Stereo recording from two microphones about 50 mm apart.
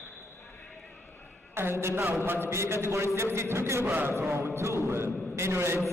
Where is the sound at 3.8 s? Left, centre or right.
Right.